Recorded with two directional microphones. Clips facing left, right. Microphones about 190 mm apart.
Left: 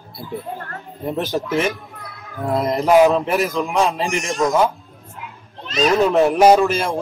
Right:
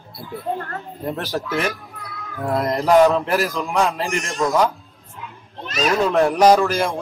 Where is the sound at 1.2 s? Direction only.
20° left (ahead or behind).